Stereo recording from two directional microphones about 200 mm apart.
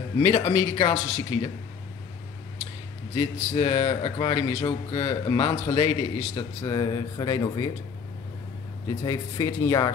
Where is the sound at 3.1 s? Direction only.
25° left (ahead or behind).